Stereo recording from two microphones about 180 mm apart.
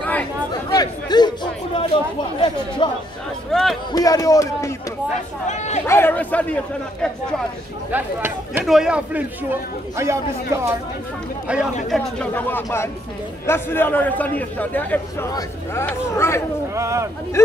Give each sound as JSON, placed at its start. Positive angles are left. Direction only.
{"t": 0.0, "sound": "chatter", "side_deg": 5}
{"t": 0.7, "sound": "speech", "side_deg": 20}
{"t": 3.5, "sound": "speech", "side_deg": 5}
{"t": 3.9, "sound": "speech", "side_deg": 20}
{"t": 5.5, "sound": "speech", "side_deg": 40}
{"t": 5.9, "sound": "a man's voice", "side_deg": 10}
{"t": 7.9, "sound": "speech", "side_deg": -10}
{"t": 11.9, "sound": "a man's voice", "side_deg": 5}
{"t": 16.7, "sound": "speech", "side_deg": -15}